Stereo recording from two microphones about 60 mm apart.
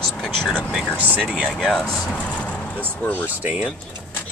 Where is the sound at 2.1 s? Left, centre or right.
Left.